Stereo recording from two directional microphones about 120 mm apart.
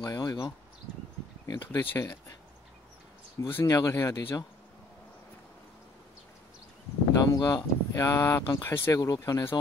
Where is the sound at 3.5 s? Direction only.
25° left (ahead or behind).